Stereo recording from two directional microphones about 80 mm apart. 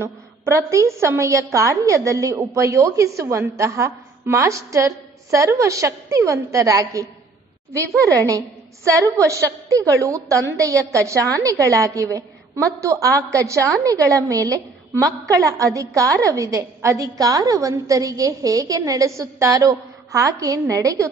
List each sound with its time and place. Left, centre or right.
0.0 s a woman's voice: right